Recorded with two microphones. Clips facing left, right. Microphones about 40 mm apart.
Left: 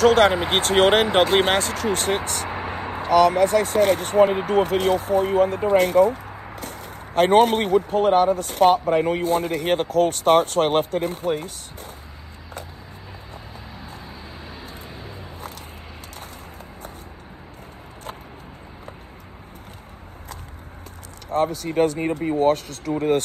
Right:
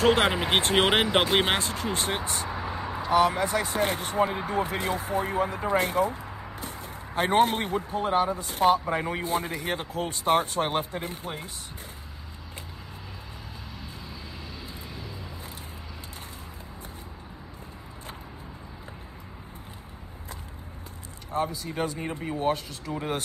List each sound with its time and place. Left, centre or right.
0.0 s speech: right
1.6 s speech: left
2.5 s a sound: left
3.1 s speech: left
21.3 s speech: left